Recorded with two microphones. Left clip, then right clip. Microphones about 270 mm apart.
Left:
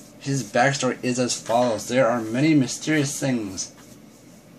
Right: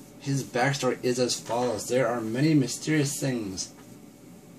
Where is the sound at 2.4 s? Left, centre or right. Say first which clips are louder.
Left 4 dB; left.